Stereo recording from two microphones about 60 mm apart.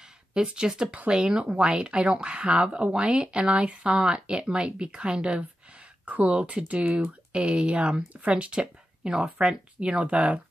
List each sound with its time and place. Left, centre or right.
0.3 s speech: centre